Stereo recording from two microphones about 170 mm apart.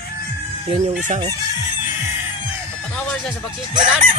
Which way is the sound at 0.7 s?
35° right (ahead or behind).